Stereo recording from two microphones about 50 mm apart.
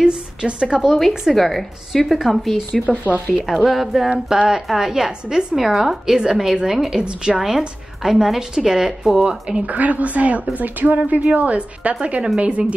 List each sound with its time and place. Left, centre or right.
0.0 s a woman's voice: centre
0.7 s a woman's voice: centre
2.9 s speech: left
3.6 s a woman's voice: centre
9.5 s a woman's voice: right